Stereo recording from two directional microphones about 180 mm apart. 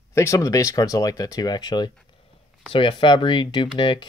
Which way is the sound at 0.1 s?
15° left (ahead or behind).